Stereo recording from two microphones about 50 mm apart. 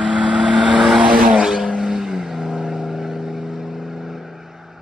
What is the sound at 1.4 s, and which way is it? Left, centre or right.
Vehicle, centre.